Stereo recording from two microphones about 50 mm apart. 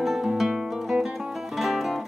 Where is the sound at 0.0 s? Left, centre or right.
Centre.